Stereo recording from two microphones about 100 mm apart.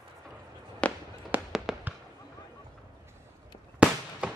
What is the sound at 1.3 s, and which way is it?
Fireworks, 15° right (ahead or behind).